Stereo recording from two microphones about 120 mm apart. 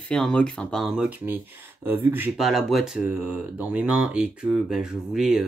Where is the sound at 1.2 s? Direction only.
15° right (ahead or behind).